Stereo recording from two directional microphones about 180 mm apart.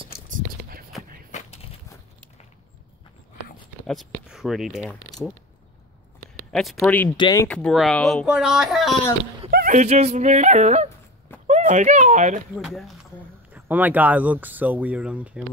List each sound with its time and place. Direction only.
0.3 s a sound: 55° right (ahead or behind)
3.8 s speech: centre (ahead or behind)
6.5 s speech: centre (ahead or behind)
7.2 s speech: 25° left (ahead or behind)
7.4 s speech: 5° left (ahead or behind)
9.5 s speech: 50° right (ahead or behind)
12.6 s speech: centre (ahead or behind)